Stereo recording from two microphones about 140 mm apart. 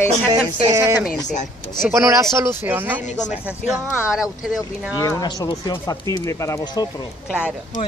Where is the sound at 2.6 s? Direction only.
15° right (ahead or behind).